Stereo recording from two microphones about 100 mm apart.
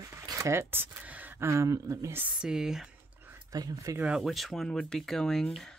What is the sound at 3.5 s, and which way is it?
Speech, 40° right (ahead or behind).